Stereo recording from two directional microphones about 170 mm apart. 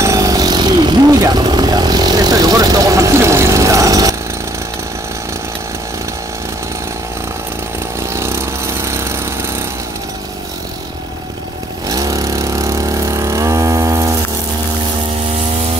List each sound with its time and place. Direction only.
0.0 s vehicle: 20° right (ahead or behind)
8.1 s a sound: 15° right (ahead or behind)
11.9 s vehicle: 20° right (ahead or behind)